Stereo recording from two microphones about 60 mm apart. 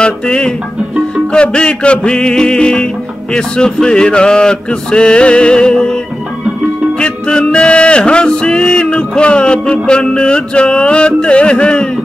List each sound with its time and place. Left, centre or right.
0.0 s music: centre
7.0 s music: centre